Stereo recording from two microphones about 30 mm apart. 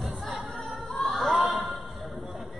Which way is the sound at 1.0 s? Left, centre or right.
Left.